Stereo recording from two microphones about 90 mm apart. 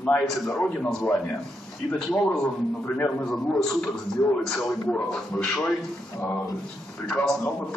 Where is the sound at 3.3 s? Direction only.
5° left (ahead or behind).